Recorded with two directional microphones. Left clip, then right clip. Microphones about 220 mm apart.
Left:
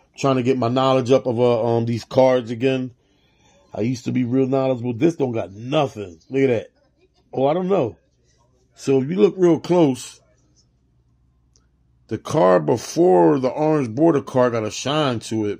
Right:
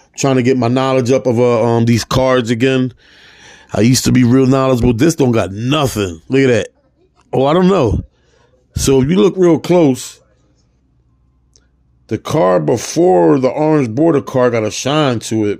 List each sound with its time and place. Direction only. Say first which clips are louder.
0.0 s speech: right 6 dB; 20° right (ahead or behind)
3.3 s speech: right 13 dB; 45° right (ahead or behind); by 10.2 s 15° right (ahead or behind)
12.1 s speech: right 3 dB; 15° right (ahead or behind)